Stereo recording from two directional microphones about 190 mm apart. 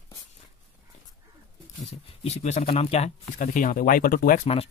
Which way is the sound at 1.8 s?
30° left (ahead or behind).